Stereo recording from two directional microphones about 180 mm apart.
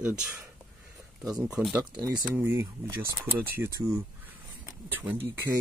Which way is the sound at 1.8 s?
20° right (ahead or behind).